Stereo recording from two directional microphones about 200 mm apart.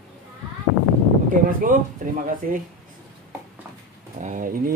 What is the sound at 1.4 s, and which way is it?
A child's voice, 40° right (ahead or behind).